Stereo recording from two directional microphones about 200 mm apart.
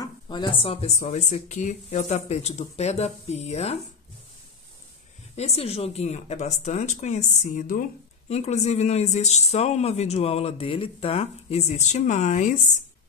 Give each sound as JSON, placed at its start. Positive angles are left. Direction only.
{"t": 0.0, "sound": "speech", "side_deg": 20}
{"t": 5.3, "sound": "speech", "side_deg": 30}